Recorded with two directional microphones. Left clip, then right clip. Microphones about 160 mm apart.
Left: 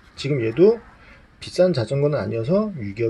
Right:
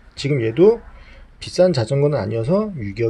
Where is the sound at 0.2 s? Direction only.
5° right (ahead or behind).